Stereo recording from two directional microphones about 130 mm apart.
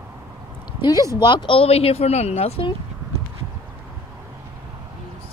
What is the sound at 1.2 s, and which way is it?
Speech, 35° left (ahead or behind).